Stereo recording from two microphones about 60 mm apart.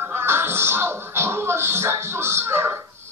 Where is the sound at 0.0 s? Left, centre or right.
Right.